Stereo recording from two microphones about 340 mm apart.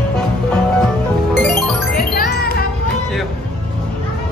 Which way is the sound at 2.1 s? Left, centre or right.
Left.